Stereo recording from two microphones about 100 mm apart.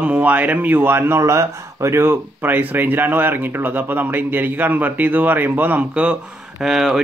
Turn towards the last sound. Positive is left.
turn(degrees=-5)  # may be behind; listen again after turning